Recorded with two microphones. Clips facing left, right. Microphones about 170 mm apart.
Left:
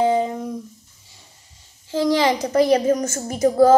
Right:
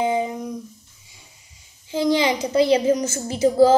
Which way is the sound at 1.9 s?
20° right (ahead or behind).